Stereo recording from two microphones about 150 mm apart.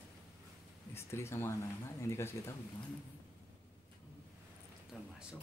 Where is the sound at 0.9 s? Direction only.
15° left (ahead or behind).